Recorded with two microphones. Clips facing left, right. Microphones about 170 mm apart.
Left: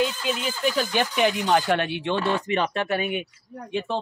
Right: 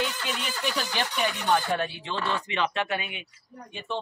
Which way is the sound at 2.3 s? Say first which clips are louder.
Left 4 dB; 45° left (ahead or behind).